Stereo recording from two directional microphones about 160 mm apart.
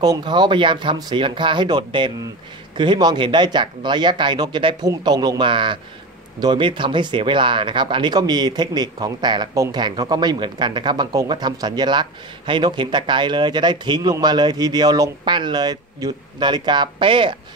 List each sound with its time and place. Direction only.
0.0 s speech: 25° right (ahead or behind)